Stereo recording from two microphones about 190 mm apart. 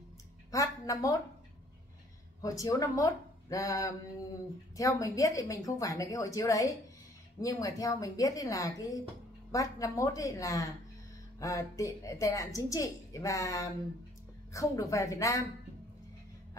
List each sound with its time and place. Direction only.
0.5 s a woman's voice: 15° left (ahead or behind)
2.4 s a woman's voice: 20° left (ahead or behind)